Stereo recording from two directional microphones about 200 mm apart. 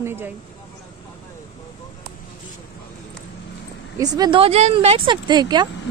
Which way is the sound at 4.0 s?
20° right (ahead or behind).